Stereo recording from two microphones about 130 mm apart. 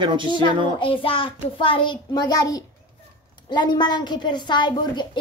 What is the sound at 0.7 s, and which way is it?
A child's voice, 45° left (ahead or behind).